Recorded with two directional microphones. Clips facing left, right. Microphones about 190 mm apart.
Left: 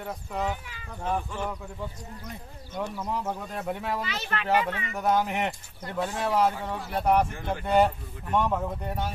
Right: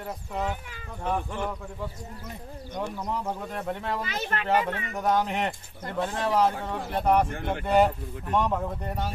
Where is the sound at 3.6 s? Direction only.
10° left (ahead or behind).